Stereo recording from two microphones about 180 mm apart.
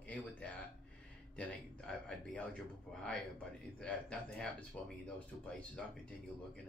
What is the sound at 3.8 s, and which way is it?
A man's voice, 5° left (ahead or behind).